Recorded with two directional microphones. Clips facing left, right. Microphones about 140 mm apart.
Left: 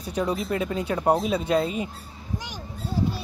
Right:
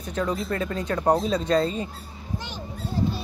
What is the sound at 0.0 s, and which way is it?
Speech, 10° left (ahead or behind).